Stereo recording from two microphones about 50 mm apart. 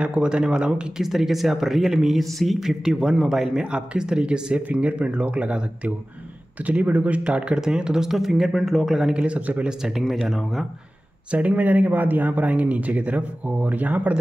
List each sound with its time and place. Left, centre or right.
0.0 s speech: right
1.0 s speech: centre
2.8 s speech: centre
6.6 s speech: right; by 9.1 s centre
9.1 s speech: right
9.8 s speech: centre
11.2 s a man's voice: right